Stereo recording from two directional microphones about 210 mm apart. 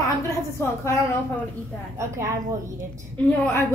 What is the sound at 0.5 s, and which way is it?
Speech, 15° left (ahead or behind).